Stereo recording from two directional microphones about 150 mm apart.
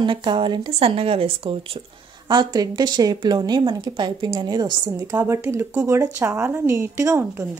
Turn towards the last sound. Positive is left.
turn(degrees=-20)  # may be behind; listen again after turning